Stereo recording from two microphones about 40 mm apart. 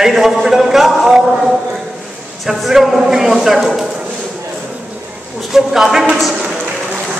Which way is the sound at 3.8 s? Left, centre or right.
Centre.